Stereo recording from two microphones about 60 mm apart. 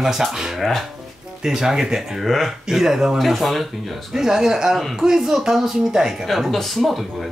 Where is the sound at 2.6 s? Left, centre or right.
Centre.